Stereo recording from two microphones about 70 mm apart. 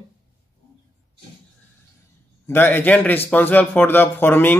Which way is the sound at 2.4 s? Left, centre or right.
Left.